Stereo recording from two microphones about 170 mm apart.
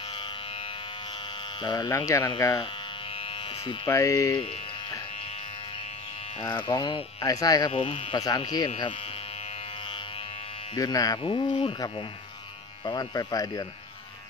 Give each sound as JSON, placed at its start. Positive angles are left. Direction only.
{"t": 1.6, "sound": "speech", "side_deg": 25}
{"t": 3.6, "sound": "speech", "side_deg": 20}
{"t": 6.4, "sound": "speech", "side_deg": 25}
{"t": 7.8, "sound": "speech", "side_deg": 35}
{"t": 10.7, "sound": "speech", "side_deg": 20}